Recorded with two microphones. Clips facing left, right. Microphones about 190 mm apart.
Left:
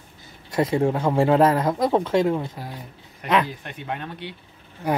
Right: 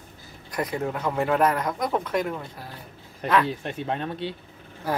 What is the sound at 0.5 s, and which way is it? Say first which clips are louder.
Speech: left 7 dB; 25° left (ahead or behind).